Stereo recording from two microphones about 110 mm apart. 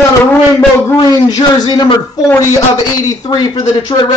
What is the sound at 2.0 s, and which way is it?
Speech, 35° left (ahead or behind).